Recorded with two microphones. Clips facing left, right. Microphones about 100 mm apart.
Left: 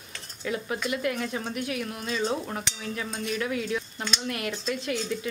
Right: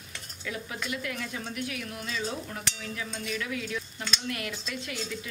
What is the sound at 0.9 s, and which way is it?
Speech, 30° left (ahead or behind).